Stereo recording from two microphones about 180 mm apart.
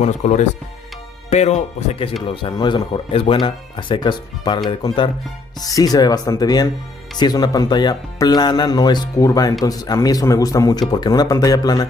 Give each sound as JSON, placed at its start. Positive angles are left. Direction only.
{"t": 0.0, "sound": "speech", "side_deg": 40}